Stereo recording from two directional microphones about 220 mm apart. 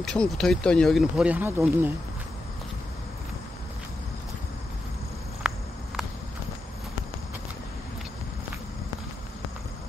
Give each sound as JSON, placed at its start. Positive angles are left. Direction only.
{"t": 0.0, "sound": "speech", "side_deg": 0}
{"t": 5.4, "sound": "cricket", "side_deg": -5}